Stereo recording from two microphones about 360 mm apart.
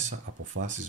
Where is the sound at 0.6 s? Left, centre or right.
Right.